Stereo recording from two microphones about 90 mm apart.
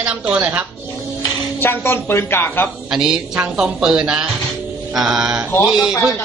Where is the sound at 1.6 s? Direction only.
25° left (ahead or behind).